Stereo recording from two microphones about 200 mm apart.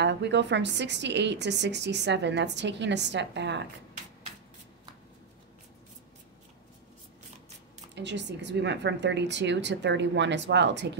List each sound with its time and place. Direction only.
0.0 s a woman's voice: 60° right (ahead or behind)
7.9 s a woman's voice: 60° right (ahead or behind)